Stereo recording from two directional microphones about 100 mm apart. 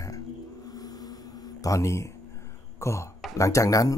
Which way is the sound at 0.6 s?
40° left (ahead or behind).